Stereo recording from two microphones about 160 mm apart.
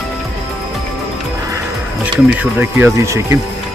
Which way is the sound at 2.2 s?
10° right (ahead or behind).